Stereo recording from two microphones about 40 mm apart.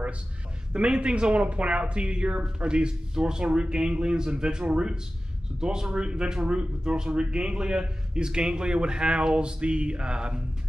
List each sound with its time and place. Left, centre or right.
0.7 s speech: right